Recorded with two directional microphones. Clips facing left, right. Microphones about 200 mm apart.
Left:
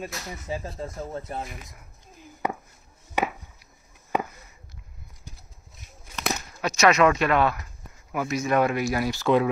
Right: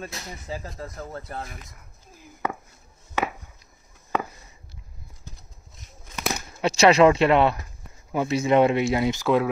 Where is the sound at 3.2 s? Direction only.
15° left (ahead or behind).